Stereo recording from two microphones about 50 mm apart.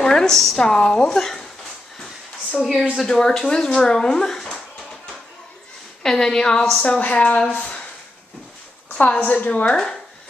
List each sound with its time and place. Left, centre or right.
0.0 s speech: centre
3.0 s speech: centre
6.0 s speech: centre
6.8 s a woman's voice: left
8.9 s a woman's voice: left